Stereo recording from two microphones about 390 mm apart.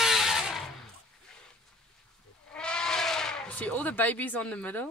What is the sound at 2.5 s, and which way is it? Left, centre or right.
Bleat, centre.